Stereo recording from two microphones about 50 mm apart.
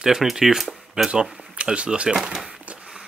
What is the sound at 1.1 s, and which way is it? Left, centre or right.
Speech, centre.